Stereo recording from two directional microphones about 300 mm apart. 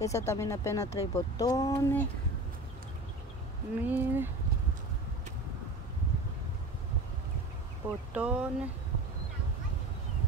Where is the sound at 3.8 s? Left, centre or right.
Centre.